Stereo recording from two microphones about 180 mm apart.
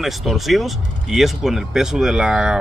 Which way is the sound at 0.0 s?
Centre (ahead or behind).